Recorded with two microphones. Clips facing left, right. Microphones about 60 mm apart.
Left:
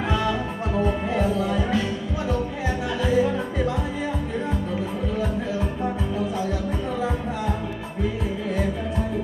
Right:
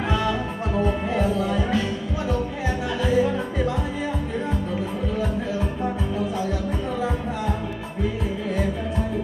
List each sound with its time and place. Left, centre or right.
0.0 s music: centre
7.0 s music: centre